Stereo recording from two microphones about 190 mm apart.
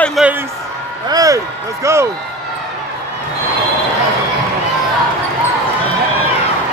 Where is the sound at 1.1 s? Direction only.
20° right (ahead or behind).